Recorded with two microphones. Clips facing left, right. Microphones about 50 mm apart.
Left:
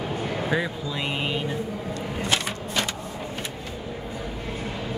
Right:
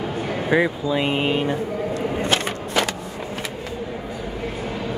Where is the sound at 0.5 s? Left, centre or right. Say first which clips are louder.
Right 11 dB; right.